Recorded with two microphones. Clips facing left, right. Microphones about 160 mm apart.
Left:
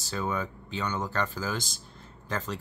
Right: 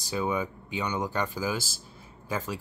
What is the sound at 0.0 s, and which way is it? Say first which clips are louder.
Speech: right 3 dB; 10° right (ahead or behind).